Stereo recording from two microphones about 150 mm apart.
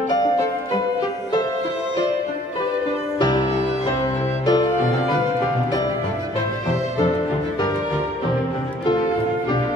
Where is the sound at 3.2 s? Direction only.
25° left (ahead or behind).